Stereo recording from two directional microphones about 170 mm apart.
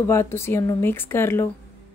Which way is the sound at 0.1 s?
15° left (ahead or behind).